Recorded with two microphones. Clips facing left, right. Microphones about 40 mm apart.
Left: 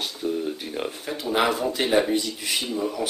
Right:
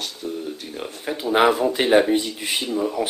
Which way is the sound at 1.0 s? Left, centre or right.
Centre.